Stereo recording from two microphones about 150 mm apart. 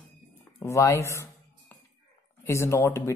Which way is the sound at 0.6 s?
20° left (ahead or behind).